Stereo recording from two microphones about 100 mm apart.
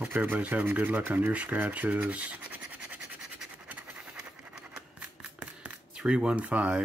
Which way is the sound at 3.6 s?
15° right (ahead or behind).